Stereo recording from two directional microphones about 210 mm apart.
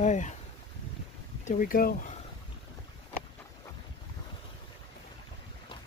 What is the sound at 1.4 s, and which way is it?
Speech, 40° left (ahead or behind).